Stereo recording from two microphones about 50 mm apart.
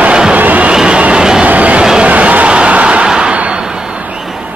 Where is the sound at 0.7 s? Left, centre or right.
Centre.